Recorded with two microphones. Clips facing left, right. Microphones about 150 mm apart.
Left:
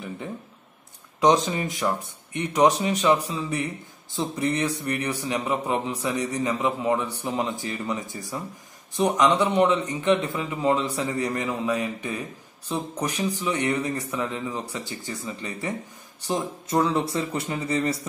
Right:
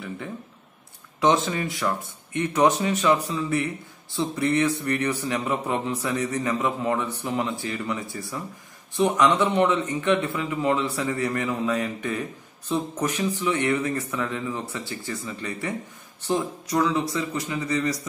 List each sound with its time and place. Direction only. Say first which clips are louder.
1.4 s a man's voice: even; 20° left (ahead or behind)
16.6 s a man's voice: left 2 dB; 25° left (ahead or behind)